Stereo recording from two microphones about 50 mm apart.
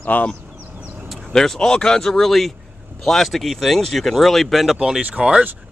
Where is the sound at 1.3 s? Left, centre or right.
Centre.